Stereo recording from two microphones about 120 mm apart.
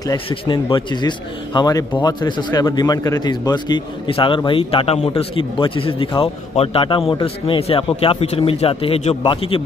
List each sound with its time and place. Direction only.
0.3 s a man's voice: 40° left (ahead or behind)